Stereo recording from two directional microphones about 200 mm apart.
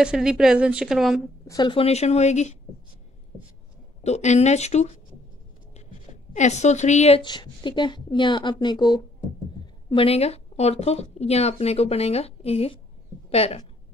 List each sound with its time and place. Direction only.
0.0 s a woman's voice: 5° right (ahead or behind)
1.5 s a woman's voice: 20° left (ahead or behind)
4.0 s a woman's voice: 35° left (ahead or behind)
6.3 s a woman's voice: 35° left (ahead or behind)